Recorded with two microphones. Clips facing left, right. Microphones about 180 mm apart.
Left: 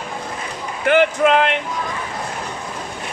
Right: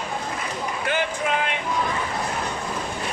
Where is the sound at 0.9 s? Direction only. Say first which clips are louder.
Left 11 dB; 70° left (ahead or behind).